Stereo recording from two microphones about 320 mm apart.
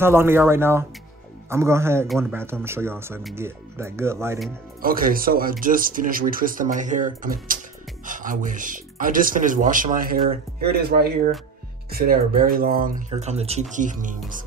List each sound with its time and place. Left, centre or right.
0.0 s speech: centre
4.8 s speech: right